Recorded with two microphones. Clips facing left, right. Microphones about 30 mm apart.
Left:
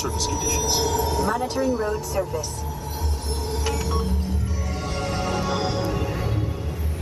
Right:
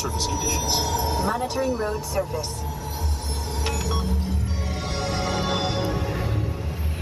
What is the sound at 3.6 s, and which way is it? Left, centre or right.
Music, right.